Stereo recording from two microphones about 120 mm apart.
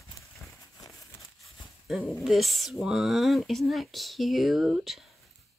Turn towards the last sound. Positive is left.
turn(degrees=0)  # may be behind; listen again after turning